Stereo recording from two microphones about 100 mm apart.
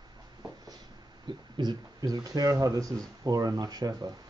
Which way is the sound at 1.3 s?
50° right (ahead or behind).